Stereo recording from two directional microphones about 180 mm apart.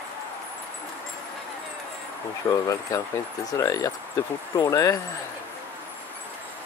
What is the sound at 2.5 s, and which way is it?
Speech, 15° left (ahead or behind).